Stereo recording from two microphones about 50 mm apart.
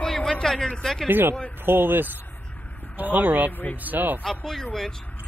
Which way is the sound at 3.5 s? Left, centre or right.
Left.